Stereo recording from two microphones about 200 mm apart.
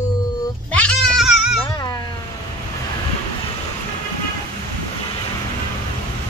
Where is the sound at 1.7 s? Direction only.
20° left (ahead or behind).